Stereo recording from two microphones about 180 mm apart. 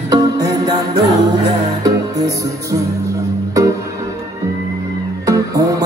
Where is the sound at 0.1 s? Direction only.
20° right (ahead or behind).